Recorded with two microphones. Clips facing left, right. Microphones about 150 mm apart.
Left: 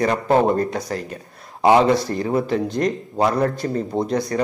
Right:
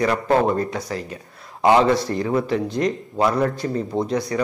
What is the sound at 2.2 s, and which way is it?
Speech, 30° left (ahead or behind).